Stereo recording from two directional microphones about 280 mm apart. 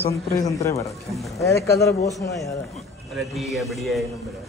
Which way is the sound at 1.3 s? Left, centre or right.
Centre.